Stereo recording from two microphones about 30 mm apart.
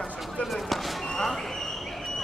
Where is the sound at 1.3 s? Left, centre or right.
Centre.